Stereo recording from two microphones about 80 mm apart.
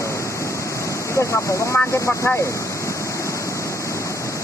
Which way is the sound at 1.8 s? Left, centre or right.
Left.